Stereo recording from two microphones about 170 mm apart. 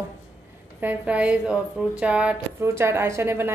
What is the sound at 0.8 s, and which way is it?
A woman's voice, 10° right (ahead or behind).